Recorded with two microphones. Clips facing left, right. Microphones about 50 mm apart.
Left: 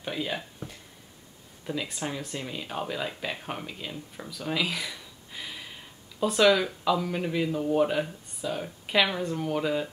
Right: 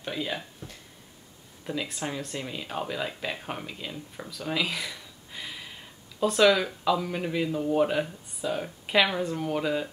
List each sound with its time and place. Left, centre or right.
0.0 s speech: centre
0.6 s a sound: left
1.7 s speech: centre